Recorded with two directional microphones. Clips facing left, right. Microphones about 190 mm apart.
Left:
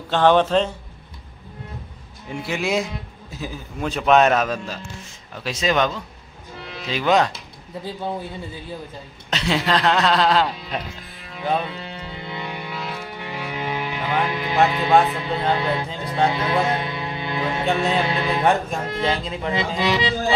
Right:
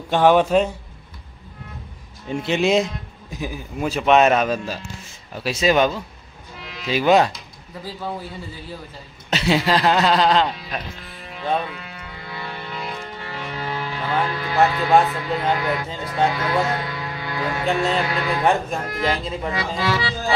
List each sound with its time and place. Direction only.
0.1 s a man's voice: 10° right (ahead or behind)
2.2 s a man's voice: 25° right (ahead or behind)
7.8 s speech: 25° left (ahead or behind)
9.3 s speech: 5° right (ahead or behind)
11.6 s music: 30° left (ahead or behind)
12.7 s music: 5° left (ahead or behind); by 14.6 s 20° left (ahead or behind)
14.7 s speech: 20° left (ahead or behind)
17.6 s speech: centre (ahead or behind)
18.0 s speech: 25° left (ahead or behind)
18.4 s speech: centre (ahead or behind)
19.8 s speech: 20° left (ahead or behind)